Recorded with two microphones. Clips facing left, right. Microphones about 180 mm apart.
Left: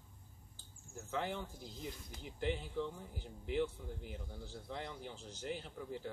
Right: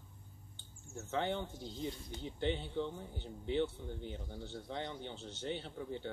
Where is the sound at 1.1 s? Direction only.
30° right (ahead or behind).